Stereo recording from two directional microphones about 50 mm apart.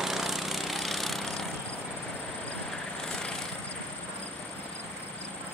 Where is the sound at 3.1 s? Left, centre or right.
Centre.